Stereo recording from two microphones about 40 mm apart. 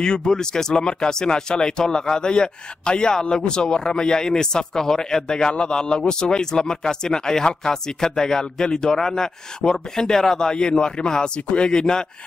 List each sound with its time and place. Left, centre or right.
0.0 s speech: centre